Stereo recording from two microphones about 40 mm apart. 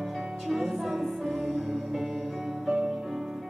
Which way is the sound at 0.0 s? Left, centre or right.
Centre.